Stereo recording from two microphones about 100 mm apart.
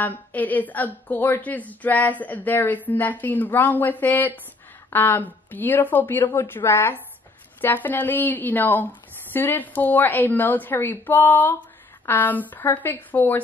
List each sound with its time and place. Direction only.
0.0 s a woman's voice: 15° left (ahead or behind)